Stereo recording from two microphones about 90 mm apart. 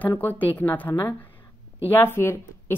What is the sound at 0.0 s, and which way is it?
A woman's voice, 20° left (ahead or behind).